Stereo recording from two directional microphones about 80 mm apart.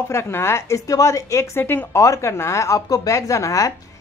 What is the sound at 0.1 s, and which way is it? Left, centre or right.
Speech, left.